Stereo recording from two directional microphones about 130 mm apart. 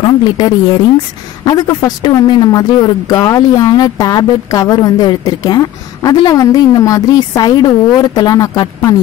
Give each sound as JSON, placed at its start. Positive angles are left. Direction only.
{"t": 0.0, "sound": "a woman's voice", "side_deg": 35}